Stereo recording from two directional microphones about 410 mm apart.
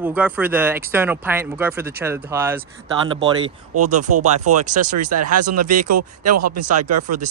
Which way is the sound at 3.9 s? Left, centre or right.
Right.